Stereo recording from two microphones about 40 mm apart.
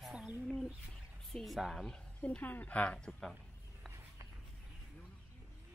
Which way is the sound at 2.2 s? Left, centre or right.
Left.